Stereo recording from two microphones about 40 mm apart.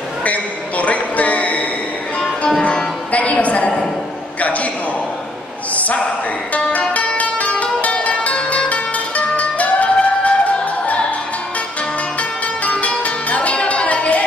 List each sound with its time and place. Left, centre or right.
0.2 s a sound: left
3.1 s music: left
4.4 s a sound: left
7.2 s zither: left
9.4 s music: left
12.2 s music: left